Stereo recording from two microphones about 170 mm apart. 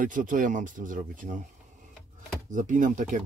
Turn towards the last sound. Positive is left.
turn(degrees=-50)  # may be behind; listen again after turning